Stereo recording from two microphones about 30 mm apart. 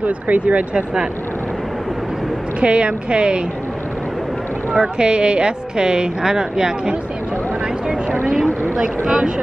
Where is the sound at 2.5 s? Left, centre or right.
Right.